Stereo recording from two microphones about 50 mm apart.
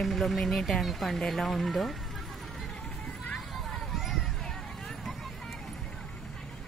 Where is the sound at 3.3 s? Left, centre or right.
Centre.